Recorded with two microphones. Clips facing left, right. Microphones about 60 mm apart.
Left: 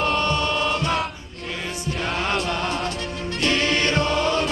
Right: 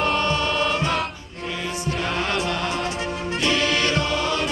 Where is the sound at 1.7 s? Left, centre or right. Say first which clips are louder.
Right 3 dB; right.